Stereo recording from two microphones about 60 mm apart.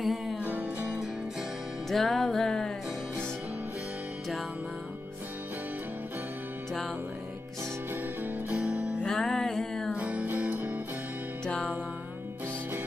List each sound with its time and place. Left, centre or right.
0.0 s music: centre
0.4 s music: right
1.9 s music: centre
8.5 s music: right
9.0 s music: centre
9.9 s music: right